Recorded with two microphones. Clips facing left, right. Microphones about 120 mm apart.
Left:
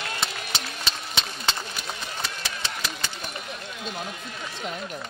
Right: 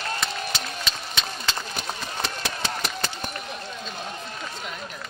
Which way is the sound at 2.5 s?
45° right (ahead or behind).